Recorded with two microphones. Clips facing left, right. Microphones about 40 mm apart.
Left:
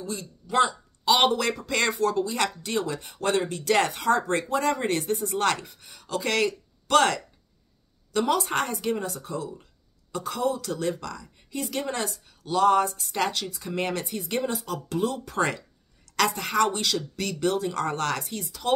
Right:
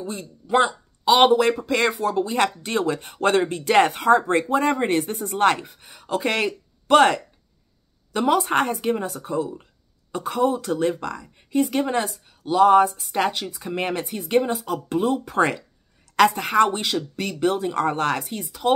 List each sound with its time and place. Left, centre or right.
0.0 s speech: right
1.0 s speech: centre
2.2 s speech: right